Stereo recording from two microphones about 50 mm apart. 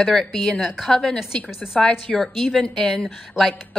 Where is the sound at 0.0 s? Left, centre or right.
Centre.